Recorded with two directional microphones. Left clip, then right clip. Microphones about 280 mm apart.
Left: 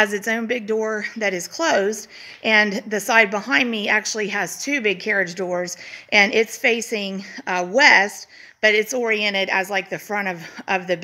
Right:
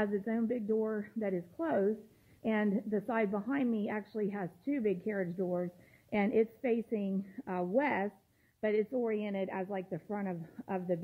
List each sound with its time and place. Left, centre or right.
0.0 s a woman's voice: centre